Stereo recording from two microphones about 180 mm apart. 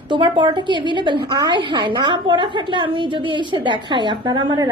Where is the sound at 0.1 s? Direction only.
25° right (ahead or behind).